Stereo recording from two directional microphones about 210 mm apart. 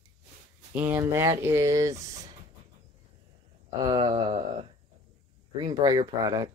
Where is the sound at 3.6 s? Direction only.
20° right (ahead or behind).